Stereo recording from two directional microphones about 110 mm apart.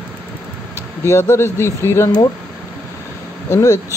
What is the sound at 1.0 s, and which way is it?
Speech, 25° left (ahead or behind).